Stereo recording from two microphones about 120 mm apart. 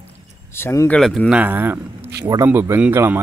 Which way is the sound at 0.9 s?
5° left (ahead or behind).